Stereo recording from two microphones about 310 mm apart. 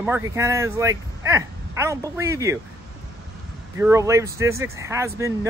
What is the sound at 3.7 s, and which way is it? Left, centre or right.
Speech, centre.